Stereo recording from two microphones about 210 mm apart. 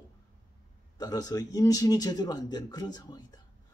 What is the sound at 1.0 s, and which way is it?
Speech, 20° left (ahead or behind).